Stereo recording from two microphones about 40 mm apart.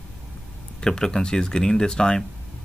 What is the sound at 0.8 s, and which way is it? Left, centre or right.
Speech, centre.